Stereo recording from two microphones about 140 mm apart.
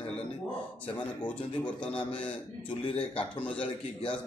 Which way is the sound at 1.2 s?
10° left (ahead or behind).